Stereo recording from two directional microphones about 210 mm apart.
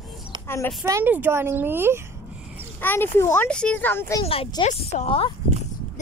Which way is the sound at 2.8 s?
10° left (ahead or behind).